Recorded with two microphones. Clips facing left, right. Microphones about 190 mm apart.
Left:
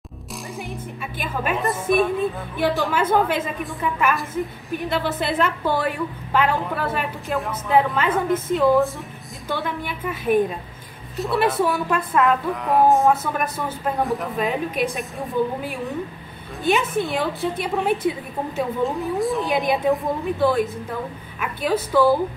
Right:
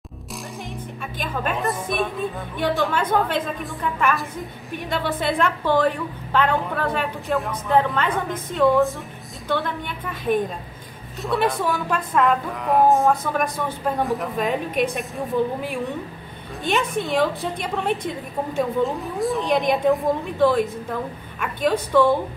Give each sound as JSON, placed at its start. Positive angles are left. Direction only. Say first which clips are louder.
{"t": 0.6, "sound": "a woman's voice", "louder": "left 3 dB", "side_deg": 5}